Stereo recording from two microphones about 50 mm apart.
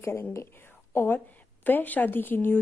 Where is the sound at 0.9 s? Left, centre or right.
Left.